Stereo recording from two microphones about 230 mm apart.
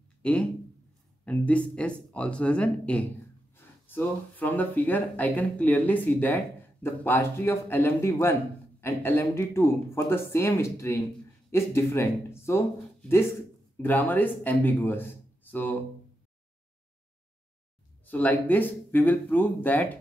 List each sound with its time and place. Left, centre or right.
0.2 s speech: centre
13.8 s speech: centre
18.0 s speech: centre